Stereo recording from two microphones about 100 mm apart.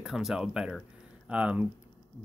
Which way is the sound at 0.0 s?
5° right (ahead or behind).